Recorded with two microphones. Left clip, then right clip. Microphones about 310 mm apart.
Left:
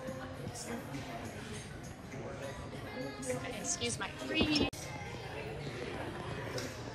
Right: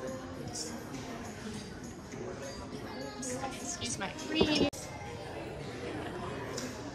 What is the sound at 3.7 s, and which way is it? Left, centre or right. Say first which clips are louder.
Speech: even; right.